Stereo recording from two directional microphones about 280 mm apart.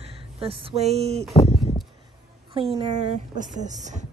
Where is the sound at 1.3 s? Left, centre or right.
Centre.